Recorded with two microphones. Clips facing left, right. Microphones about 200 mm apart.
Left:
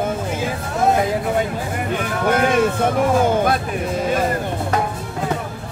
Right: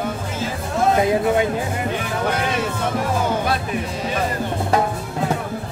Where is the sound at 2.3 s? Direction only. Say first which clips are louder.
Left 8 dB; 50° left (ahead or behind).